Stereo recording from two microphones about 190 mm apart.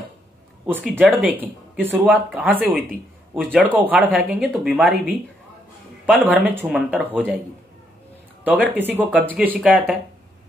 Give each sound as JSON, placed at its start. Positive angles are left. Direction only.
{"t": 0.9, "sound": "speech", "side_deg": -10}
{"t": 2.0, "sound": "speech", "side_deg": 0}
{"t": 6.4, "sound": "speech", "side_deg": -10}
{"t": 8.5, "sound": "speech", "side_deg": -10}